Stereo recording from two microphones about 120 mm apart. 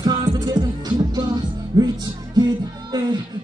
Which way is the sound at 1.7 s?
35° right (ahead or behind).